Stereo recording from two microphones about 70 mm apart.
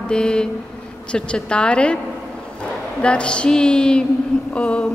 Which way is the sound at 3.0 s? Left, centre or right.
Centre.